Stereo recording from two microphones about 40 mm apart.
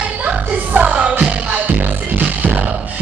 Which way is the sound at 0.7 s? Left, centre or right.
Right.